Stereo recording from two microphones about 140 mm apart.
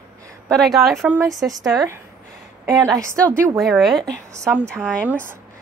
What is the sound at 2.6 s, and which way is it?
Speech, 25° right (ahead or behind).